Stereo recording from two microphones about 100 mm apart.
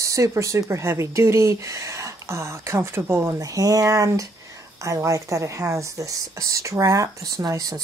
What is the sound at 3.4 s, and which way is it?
Speech, 35° right (ahead or behind).